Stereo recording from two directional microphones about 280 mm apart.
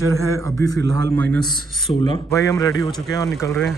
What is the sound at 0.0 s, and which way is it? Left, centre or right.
Speech, right.